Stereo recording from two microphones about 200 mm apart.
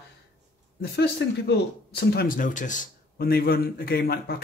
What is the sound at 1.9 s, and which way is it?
A man's voice, 50° left (ahead or behind).